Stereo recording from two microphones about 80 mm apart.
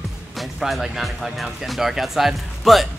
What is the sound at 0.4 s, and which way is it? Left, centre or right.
Speech, centre.